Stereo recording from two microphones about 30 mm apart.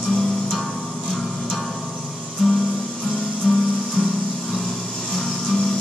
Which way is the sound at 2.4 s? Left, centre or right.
Centre.